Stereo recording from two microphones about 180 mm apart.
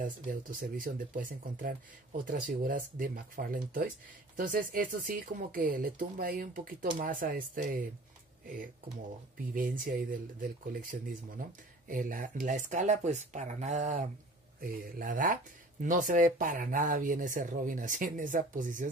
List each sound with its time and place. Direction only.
0.0 s speech: 50° right (ahead or behind)
9.5 s speech: 50° right (ahead or behind)